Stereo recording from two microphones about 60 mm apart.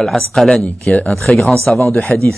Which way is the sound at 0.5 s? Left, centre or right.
Left.